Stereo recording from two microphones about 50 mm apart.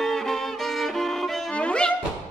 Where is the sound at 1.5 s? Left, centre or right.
Left.